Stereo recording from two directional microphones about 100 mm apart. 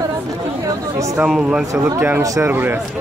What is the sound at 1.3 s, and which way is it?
Speech, 5° right (ahead or behind).